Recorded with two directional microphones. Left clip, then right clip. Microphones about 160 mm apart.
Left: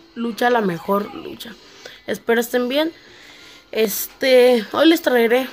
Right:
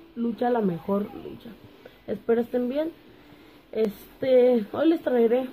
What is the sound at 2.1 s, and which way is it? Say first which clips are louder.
A woman's voice: left 6 dB; 15° left (ahead or behind).